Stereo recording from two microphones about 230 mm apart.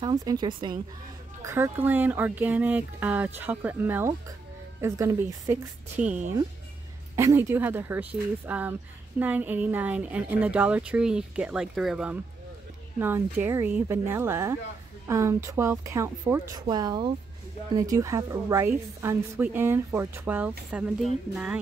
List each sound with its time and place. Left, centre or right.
0.0 s a woman's voice: centre